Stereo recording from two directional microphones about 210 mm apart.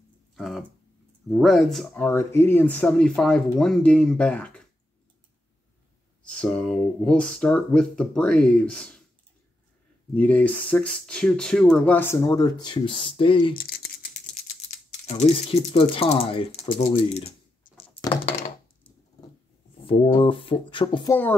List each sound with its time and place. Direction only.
0.4 s speech: centre (ahead or behind)
6.2 s speech: 5° left (ahead or behind)
10.1 s speech: 5° left (ahead or behind); by 13.6 s 25° left (ahead or behind)
13.6 s rattle: 45° left (ahead or behind)
14.3 s speech: 35° left (ahead or behind)
17.7 s a sound: 25° left (ahead or behind)
19.8 s speech: 25° left (ahead or behind)